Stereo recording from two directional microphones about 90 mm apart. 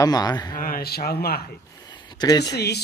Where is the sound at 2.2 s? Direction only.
45° left (ahead or behind).